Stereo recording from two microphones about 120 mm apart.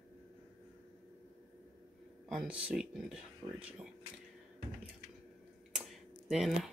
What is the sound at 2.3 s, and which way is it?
Speech, 10° right (ahead or behind).